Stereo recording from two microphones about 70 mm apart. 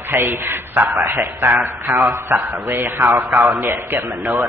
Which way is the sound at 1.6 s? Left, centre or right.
Right.